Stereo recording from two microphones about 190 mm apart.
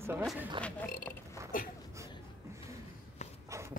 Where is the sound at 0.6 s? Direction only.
5° left (ahead or behind).